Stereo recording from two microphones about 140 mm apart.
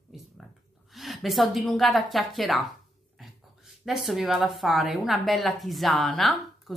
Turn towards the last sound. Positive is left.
turn(degrees=0)  # may be behind; listen again after turning